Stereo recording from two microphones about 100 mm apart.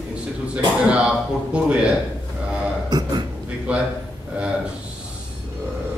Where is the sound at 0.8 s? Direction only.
10° right (ahead or behind).